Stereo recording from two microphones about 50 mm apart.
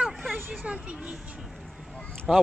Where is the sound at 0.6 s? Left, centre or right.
Right.